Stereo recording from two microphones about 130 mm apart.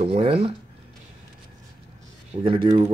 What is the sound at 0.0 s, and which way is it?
Speech, 45° right (ahead or behind).